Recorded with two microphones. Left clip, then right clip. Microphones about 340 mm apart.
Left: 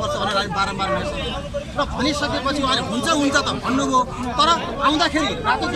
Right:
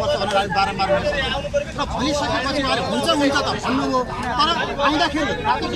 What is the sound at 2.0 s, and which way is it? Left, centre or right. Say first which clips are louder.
Speech: right 2 dB; centre.